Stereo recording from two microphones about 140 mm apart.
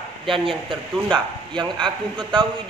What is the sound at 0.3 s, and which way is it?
A man's voice, 35° right (ahead or behind).